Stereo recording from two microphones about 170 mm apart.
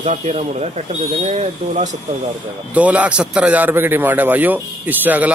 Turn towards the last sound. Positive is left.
turn(degrees=-10)  # may be behind; listen again after turning